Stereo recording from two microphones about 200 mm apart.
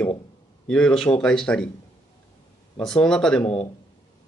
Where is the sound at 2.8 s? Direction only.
5° left (ahead or behind).